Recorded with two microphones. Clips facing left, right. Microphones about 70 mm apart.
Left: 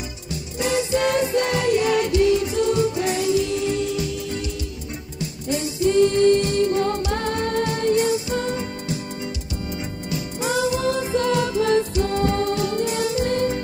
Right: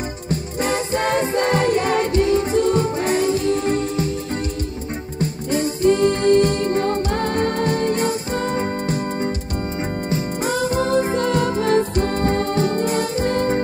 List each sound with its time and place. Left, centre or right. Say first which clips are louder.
0.3 s music: right 2 dB; right